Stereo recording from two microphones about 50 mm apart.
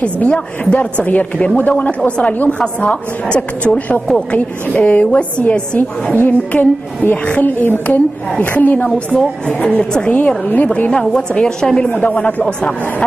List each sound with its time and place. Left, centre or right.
0.0 s a woman's voice: left
2.2 s a woman's voice: left
2.6 s a woman's voice: left
10.9 s a woman's voice: centre
11.9 s a woman's voice: left